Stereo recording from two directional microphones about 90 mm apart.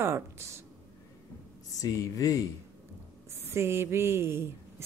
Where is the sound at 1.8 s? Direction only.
40° left (ahead or behind).